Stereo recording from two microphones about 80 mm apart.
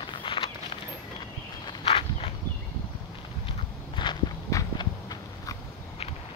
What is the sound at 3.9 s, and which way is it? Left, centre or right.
Walk, left.